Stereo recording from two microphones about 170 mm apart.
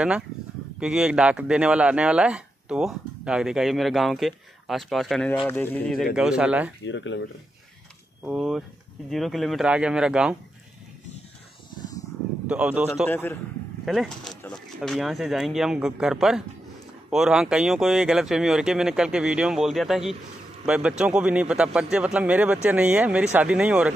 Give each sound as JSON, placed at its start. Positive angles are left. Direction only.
{"t": 0.7, "sound": "speech", "side_deg": -5}
{"t": 6.1, "sound": "speech", "side_deg": -5}
{"t": 6.9, "sound": "speech", "side_deg": 90}
{"t": 8.3, "sound": "speech", "side_deg": 0}
{"t": 12.4, "sound": "speech", "side_deg": -10}
{"t": 13.1, "sound": "speech", "side_deg": 15}
{"t": 13.8, "sound": "speech", "side_deg": 0}